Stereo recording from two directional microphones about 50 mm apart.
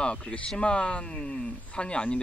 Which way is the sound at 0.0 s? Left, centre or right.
Left.